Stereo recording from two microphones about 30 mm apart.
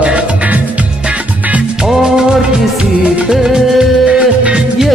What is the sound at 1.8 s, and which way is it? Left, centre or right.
Music, right.